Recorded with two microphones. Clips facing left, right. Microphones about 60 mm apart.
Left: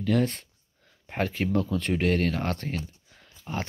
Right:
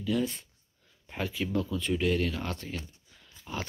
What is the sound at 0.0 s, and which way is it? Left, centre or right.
Speech, left.